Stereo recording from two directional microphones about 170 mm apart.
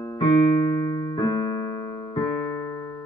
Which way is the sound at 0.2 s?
25° left (ahead or behind).